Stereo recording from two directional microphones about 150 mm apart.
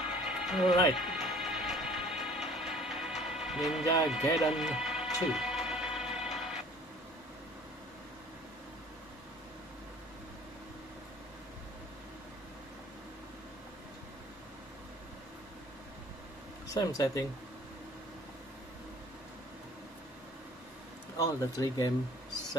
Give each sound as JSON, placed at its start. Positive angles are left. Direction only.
{"t": 0.2, "sound": "music", "side_deg": -5}
{"t": 16.7, "sound": "speech", "side_deg": 20}
{"t": 21.2, "sound": "speech", "side_deg": 20}